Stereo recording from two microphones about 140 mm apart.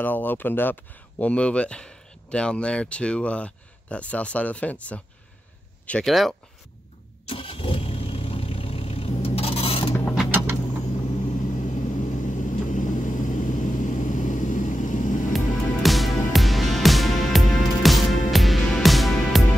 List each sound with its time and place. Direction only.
0.0 s speech: 15° left (ahead or behind)
7.2 s vehicle: 40° left (ahead or behind)
11.2 s vehicle: 65° left (ahead or behind)
15.3 s music: centre (ahead or behind)